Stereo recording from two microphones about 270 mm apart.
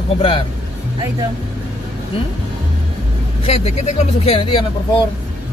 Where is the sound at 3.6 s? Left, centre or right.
Left.